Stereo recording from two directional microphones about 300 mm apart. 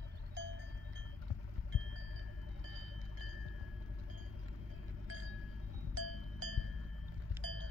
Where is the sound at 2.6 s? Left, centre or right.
Right.